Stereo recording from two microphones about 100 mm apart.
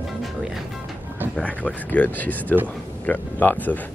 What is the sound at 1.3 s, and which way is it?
Speech, 15° left (ahead or behind).